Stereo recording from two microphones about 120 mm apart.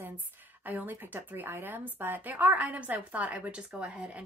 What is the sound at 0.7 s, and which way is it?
A woman's voice, 15° right (ahead or behind).